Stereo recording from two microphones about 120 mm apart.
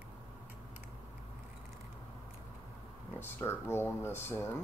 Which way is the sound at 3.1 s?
20° left (ahead or behind).